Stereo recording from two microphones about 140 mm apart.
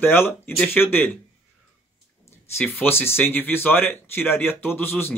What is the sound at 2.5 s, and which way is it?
Speech, 15° left (ahead or behind).